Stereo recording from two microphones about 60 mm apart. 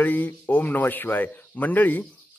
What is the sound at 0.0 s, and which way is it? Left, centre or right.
Speech, left.